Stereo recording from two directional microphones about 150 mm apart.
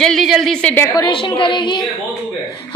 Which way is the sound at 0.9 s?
30° left (ahead or behind).